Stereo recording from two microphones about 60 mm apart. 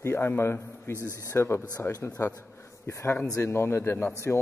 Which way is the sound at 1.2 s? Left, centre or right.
Left.